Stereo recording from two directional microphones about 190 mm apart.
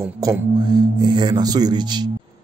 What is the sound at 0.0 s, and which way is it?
Speech, 20° right (ahead or behind).